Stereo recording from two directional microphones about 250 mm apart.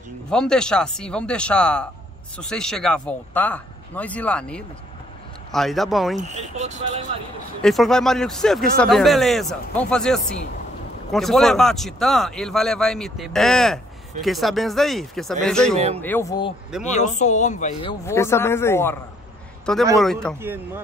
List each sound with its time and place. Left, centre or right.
0.3 s speech: centre
6.1 s speech: right
7.6 s speech: centre
16.8 s speech: left
18.0 s a man's voice: centre
20.3 s speech: centre